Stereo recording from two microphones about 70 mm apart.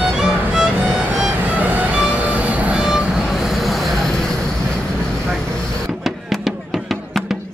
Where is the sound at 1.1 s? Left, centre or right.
Right.